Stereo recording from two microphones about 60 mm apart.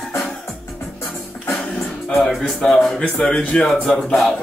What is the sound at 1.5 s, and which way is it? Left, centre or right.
Music, centre.